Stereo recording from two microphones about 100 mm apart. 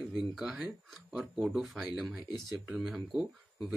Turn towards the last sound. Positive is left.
turn(degrees=-5)  # may be behind; listen again after turning